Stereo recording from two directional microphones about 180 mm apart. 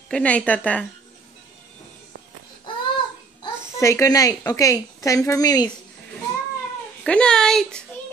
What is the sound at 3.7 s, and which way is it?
Speech, 15° left (ahead or behind).